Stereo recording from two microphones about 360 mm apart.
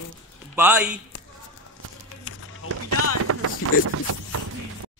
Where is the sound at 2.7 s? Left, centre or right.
Right.